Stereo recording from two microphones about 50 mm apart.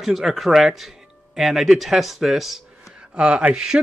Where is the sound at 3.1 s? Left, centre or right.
Centre.